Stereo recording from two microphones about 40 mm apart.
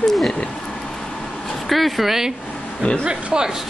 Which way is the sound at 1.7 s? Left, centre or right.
Centre.